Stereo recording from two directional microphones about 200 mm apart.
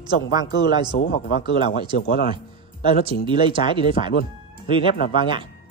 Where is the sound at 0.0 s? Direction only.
20° right (ahead or behind).